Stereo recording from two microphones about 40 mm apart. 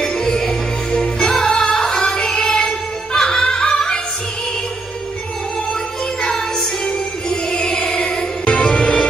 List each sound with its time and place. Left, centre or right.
0.0 s music: centre
6.2 s music: centre